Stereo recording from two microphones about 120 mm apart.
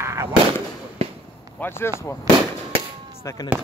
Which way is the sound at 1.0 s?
55° right (ahead or behind).